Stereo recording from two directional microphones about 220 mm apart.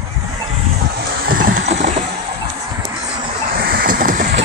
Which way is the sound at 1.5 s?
60° right (ahead or behind).